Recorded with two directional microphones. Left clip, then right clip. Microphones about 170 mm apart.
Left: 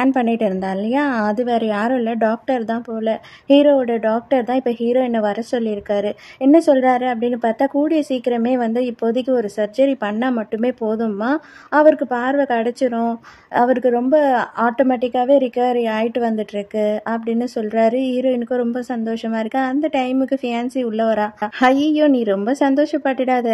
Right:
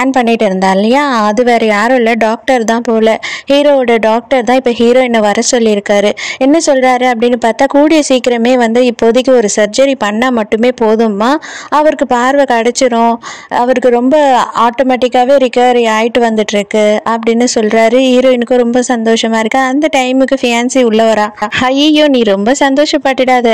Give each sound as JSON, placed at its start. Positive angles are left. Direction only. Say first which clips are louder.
{"t": 0.2, "sound": "a woman's voice", "louder": "right 10 dB", "side_deg": -20}